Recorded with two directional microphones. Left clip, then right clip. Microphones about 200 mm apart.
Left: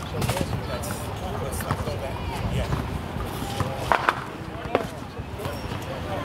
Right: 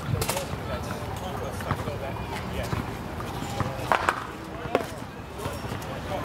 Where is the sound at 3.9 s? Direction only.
5° left (ahead or behind).